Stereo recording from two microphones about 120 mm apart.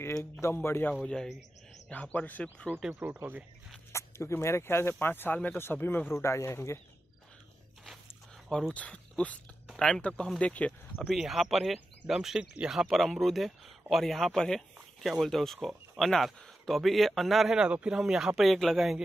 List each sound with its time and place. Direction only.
0.2 s speech: 20° left (ahead or behind)
1.0 s speech: 5° left (ahead or behind)
2.7 s speech: 15° right (ahead or behind)
3.9 s speech: 25° left (ahead or behind)
8.5 s speech: 5° left (ahead or behind)
11.0 s speech: centre (ahead or behind)